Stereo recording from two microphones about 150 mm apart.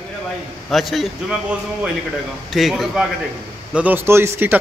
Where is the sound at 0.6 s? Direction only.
Centre (ahead or behind).